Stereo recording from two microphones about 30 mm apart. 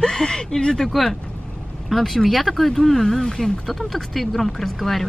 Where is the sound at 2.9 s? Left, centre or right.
Centre.